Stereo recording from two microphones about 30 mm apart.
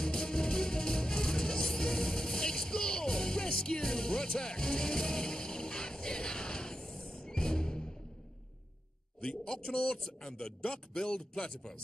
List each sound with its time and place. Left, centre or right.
0.0 s music: left
9.5 s a man's voice: left